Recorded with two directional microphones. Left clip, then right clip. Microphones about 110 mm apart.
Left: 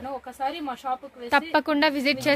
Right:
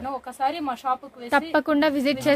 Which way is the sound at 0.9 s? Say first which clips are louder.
Even; 20° right (ahead or behind).